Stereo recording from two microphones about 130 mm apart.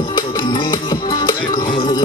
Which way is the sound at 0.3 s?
35° left (ahead or behind).